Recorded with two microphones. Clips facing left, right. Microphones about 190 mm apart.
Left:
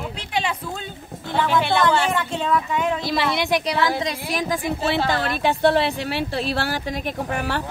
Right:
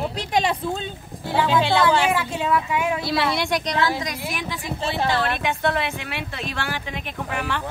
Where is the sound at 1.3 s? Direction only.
15° right (ahead or behind); by 3.7 s 5° left (ahead or behind).